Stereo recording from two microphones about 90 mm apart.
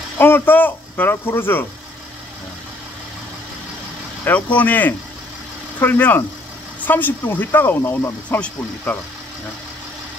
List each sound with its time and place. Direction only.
0.2 s speech: 25° left (ahead or behind)
4.2 s speech: 15° left (ahead or behind)